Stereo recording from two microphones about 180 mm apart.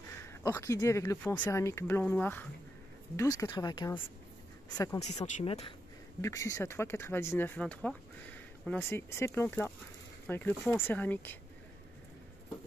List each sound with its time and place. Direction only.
0.2 s speech: 15° left (ahead or behind)
5.2 s speech: 30° left (ahead or behind)
6.2 s speech: 15° left (ahead or behind)